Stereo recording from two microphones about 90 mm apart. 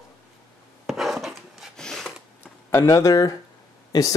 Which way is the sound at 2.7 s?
30° left (ahead or behind).